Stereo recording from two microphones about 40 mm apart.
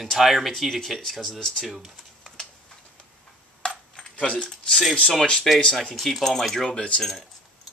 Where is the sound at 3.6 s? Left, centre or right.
Left.